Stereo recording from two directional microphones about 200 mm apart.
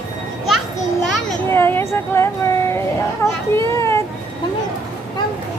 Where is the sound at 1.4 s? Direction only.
10° left (ahead or behind).